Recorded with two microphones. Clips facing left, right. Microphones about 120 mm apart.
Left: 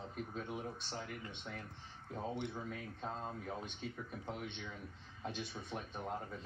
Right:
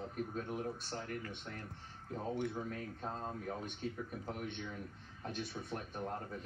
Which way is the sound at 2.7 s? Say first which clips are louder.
Right 1 dB; 5° left (ahead or behind).